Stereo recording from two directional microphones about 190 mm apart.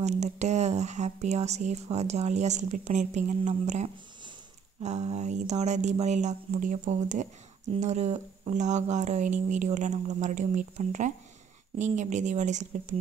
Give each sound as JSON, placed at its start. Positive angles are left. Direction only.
{"t": 0.0, "sound": "speech", "side_deg": -35}